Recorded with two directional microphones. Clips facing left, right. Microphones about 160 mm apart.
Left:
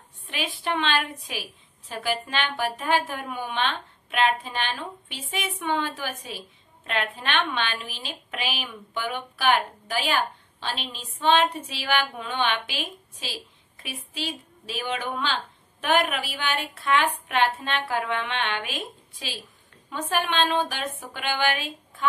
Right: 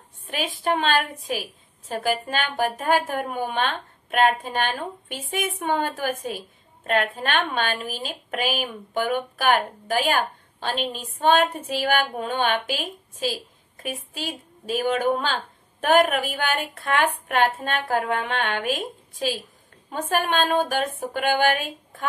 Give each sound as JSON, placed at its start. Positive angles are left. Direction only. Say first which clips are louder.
{"t": 0.3, "sound": "a woman's voice", "louder": "right 4 dB", "side_deg": -45}